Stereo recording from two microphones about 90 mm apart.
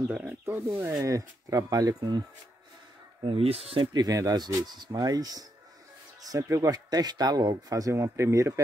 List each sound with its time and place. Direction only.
0.1 s speech: 20° right (ahead or behind); by 2.2 s 50° right (ahead or behind)
3.3 s speech: 90° right
3.9 s speech: 45° right (ahead or behind)